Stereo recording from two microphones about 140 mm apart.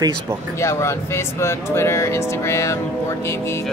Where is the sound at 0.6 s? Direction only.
20° left (ahead or behind).